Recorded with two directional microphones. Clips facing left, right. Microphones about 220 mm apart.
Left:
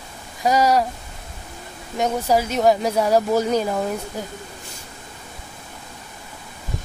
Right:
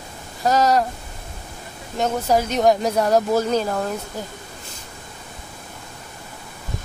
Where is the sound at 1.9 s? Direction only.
10° left (ahead or behind).